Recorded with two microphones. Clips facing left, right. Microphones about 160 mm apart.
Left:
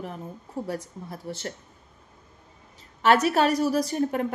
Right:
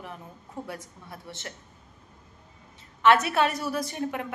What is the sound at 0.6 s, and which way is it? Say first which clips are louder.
Speech: left 7 dB; 40° left (ahead or behind).